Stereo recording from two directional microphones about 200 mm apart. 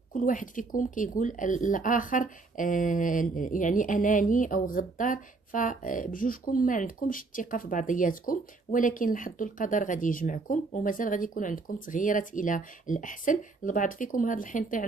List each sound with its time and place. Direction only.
0.1 s a woman's voice: 40° left (ahead or behind)